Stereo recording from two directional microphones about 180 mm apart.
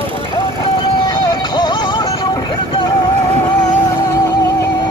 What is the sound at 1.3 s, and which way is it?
Music, 25° left (ahead or behind).